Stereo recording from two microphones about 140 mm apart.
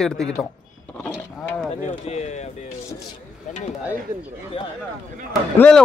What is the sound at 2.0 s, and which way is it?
Speech, 55° left (ahead or behind).